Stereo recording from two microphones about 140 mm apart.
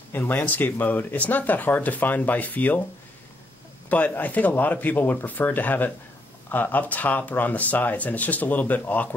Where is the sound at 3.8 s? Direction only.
10° left (ahead or behind).